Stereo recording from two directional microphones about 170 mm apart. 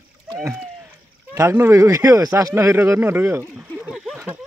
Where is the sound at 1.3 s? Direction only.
15° right (ahead or behind).